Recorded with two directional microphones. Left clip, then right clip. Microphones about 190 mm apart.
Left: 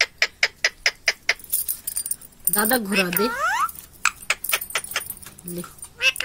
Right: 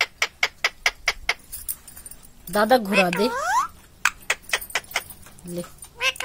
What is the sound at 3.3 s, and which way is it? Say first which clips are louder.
Rodents: even; 10° right (ahead or behind).